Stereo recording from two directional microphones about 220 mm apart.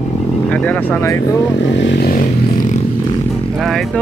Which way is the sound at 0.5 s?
5° left (ahead or behind).